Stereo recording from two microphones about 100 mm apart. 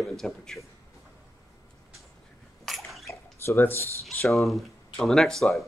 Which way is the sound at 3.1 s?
25° left (ahead or behind).